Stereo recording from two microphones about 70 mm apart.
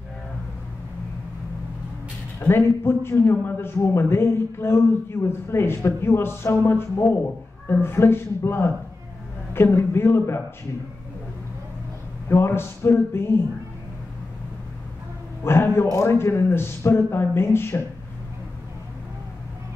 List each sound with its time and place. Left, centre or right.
2.4 s a man's voice: left
12.3 s a man's voice: left
15.4 s a man's voice: left